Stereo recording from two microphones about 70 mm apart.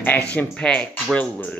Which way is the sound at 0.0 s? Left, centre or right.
Left.